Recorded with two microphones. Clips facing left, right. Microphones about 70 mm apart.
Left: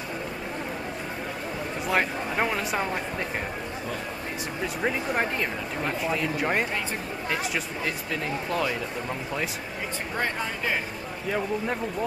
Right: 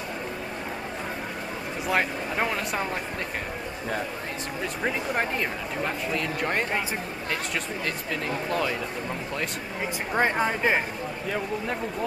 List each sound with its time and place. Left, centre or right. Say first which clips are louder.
1.9 s speech: even; centre
4.8 s speech: left 1 dB; centre
7.8 s speech: even; centre
10.1 s a woman's voice: right 7 dB; right